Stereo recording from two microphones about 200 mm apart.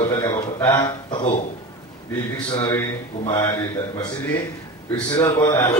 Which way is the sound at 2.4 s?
20° left (ahead or behind).